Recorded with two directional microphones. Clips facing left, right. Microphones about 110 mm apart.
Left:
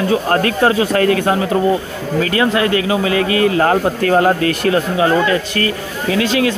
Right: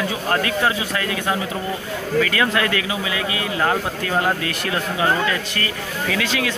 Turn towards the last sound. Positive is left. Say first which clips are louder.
# left 7 dB
turn(degrees=35)  # may be behind; listen again after turning